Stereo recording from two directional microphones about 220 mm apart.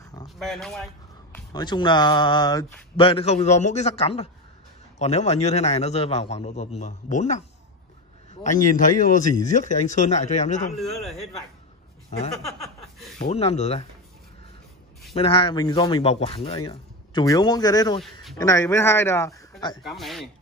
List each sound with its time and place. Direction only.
0.4 s speech: centre (ahead or behind)
1.3 s speech: 20° left (ahead or behind)
8.7 s speech: 35° left (ahead or behind)
10.8 s speech: centre (ahead or behind)
13.2 s speech: 30° left (ahead or behind)
15.1 s a man's voice: 25° left (ahead or behind)
19.8 s speech: centre (ahead or behind)